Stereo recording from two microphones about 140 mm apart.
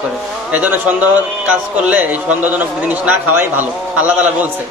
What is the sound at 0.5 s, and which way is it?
Speech, 10° right (ahead or behind).